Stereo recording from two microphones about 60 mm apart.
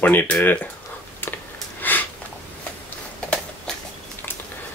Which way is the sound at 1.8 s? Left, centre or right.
Left.